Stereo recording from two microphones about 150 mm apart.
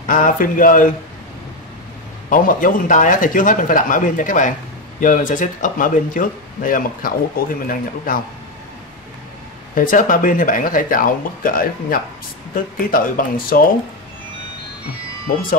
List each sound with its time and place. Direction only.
0.1 s speech: 65° left (ahead or behind)
2.2 s speech: 65° left (ahead or behind)
9.8 s speech: 65° left (ahead or behind)
15.3 s speech: 70° left (ahead or behind)